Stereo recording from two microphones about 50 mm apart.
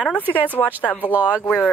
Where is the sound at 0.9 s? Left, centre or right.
Left.